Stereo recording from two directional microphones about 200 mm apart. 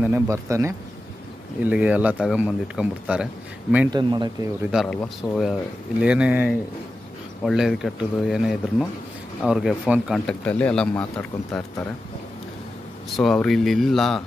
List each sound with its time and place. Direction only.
0.0 s speech: 10° right (ahead or behind)
3.9 s speech: 20° right (ahead or behind)
4.6 s speech: centre (ahead or behind)
13.1 s speech: 5° left (ahead or behind)